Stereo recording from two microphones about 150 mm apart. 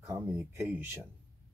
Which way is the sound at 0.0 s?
15° right (ahead or behind).